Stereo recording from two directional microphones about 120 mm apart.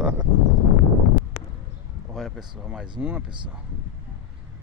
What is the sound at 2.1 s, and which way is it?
Speech, 5° right (ahead or behind).